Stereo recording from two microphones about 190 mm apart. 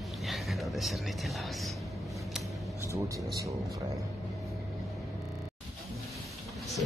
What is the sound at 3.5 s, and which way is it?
Music, 15° right (ahead or behind).